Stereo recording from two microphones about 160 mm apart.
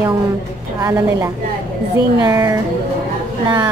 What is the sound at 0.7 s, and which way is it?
A woman's voice, 15° right (ahead or behind).